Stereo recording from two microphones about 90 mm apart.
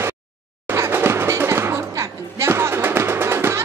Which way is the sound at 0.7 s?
25° right (ahead or behind).